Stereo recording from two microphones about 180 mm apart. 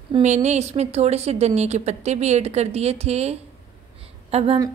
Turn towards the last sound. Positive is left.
turn(degrees=-35)  # may be behind; listen again after turning